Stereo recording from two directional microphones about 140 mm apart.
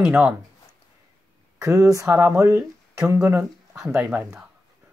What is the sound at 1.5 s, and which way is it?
Speech, 25° right (ahead or behind).